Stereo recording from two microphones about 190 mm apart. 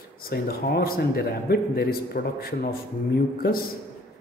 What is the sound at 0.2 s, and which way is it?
A man's voice, 55° left (ahead or behind).